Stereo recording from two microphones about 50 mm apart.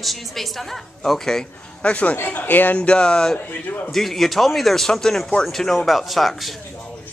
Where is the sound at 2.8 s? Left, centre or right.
Centre.